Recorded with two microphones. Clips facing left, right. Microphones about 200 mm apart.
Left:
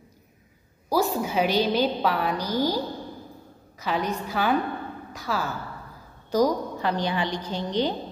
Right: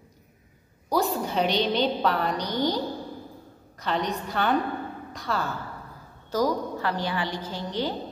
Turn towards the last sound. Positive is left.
turn(degrees=20)  # may be behind; listen again after turning